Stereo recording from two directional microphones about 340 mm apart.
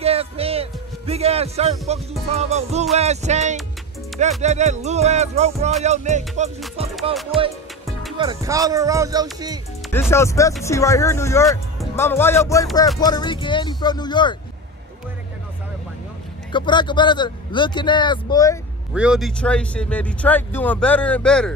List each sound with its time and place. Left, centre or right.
0.0 s speech: centre
4.4 s music: centre
6.8 s speech: centre
7.3 s speech: centre
8.2 s speech: centre
9.9 s speech: centre
16.5 s speech: centre
18.9 s speech: centre